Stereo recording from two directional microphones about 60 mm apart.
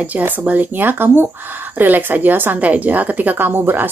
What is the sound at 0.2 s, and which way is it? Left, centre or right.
Speech, right.